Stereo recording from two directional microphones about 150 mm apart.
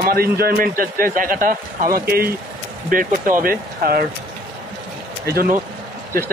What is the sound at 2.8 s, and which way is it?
A man's voice, 65° right (ahead or behind).